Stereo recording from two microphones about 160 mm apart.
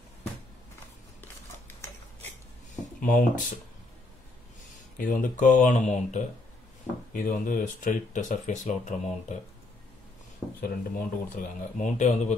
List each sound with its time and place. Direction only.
2.7 s a sound: 55° left (ahead or behind)
4.9 s speech: 55° left (ahead or behind)
7.1 s speech: 60° left (ahead or behind)
10.6 s speech: 60° left (ahead or behind)